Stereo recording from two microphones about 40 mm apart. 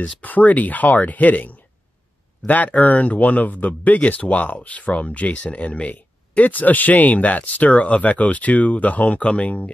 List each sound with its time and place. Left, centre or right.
0.0 s speech: left
9.3 s speech: left